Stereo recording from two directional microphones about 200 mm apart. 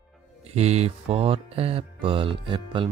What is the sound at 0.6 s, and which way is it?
Speech, 30° right (ahead or behind).